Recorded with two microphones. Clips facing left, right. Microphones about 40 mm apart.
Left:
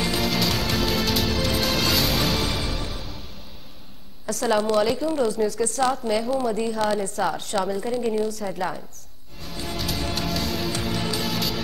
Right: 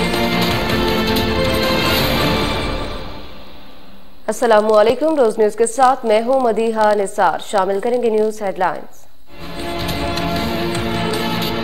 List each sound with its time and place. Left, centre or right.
0.1 s music: right
4.3 s a woman's voice: right
9.4 s music: right